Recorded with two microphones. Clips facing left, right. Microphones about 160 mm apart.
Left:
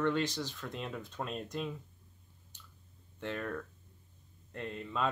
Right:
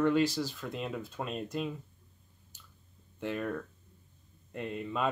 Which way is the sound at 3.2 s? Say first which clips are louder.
Right 4 dB; 10° right (ahead or behind).